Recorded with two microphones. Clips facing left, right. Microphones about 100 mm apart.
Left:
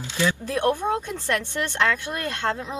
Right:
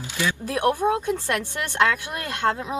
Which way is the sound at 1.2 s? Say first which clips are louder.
Left 1 dB; 20° right (ahead or behind).